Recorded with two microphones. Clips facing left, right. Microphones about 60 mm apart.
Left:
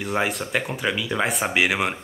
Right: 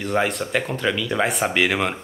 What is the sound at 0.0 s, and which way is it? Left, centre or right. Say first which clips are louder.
Speech: right 2 dB; centre.